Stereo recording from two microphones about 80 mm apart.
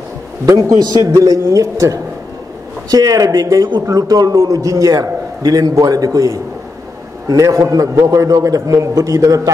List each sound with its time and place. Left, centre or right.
0.5 s a man's voice: right